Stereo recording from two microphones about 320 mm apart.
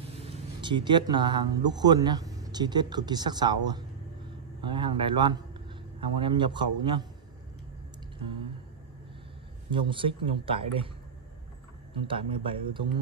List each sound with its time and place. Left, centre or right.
0.6 s a man's voice: centre
9.7 s a man's voice: centre
11.9 s a man's voice: centre